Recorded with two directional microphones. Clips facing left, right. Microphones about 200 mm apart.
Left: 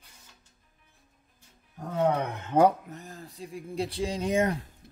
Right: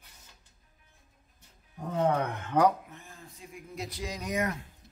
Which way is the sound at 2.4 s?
25° left (ahead or behind).